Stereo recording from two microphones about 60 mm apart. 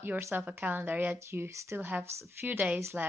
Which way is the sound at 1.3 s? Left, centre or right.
Right.